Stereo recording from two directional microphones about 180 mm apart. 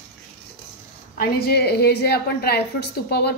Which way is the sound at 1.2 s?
60° left (ahead or behind).